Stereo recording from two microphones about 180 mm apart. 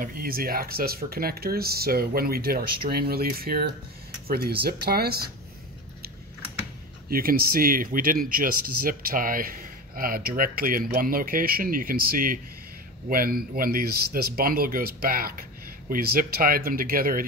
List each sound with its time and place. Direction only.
0.0 s speech: 55° right (ahead or behind)
7.1 s speech: 55° right (ahead or behind)